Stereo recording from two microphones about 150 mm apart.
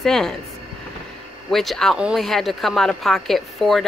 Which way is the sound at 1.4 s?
Centre (ahead or behind).